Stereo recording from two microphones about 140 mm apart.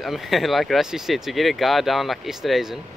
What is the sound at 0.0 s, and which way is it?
Speech, centre (ahead or behind).